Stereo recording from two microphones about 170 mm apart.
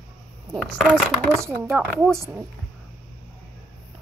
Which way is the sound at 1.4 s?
15° right (ahead or behind).